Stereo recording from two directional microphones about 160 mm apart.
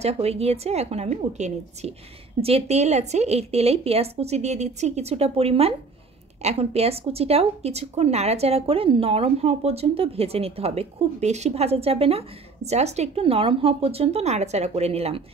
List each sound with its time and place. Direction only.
0.0 s speech: 40° right (ahead or behind)